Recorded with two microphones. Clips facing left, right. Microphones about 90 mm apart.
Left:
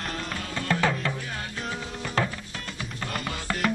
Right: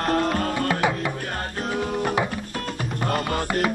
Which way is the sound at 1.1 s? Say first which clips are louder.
Right 5 dB; 50° right (ahead or behind).